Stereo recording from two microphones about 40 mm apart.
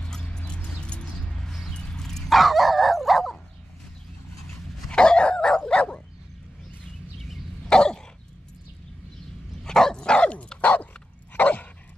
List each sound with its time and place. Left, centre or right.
0.6 s a sound: left
1.4 s a sound: centre
1.7 s horse: left
2.0 s dog: centre
2.3 s dog: centre
4.9 s dog: left
7.6 s dog: centre
9.6 s dog: centre
10.6 s dog: left